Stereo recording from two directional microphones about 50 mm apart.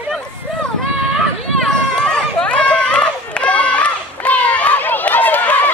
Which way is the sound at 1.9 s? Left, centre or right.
Centre.